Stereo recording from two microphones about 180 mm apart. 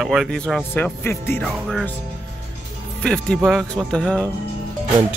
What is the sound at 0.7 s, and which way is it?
Speech, 10° left (ahead or behind).